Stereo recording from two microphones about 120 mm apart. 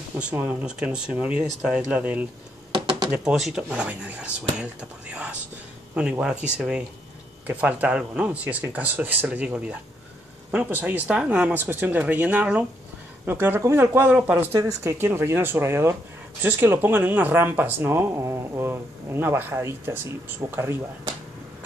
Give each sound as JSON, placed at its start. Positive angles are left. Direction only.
{"t": 0.1, "sound": "speech", "side_deg": -15}
{"t": 14.6, "sound": "speech", "side_deg": -30}